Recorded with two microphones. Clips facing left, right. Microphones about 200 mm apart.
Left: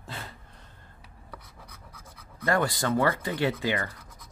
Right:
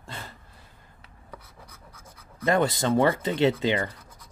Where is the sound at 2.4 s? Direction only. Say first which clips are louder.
Right 3 dB; 20° right (ahead or behind).